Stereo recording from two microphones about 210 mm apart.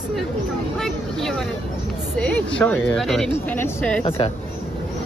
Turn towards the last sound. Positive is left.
turn(degrees=25)  # may be behind; listen again after turning